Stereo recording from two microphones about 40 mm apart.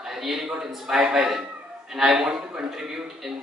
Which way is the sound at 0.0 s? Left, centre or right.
Centre.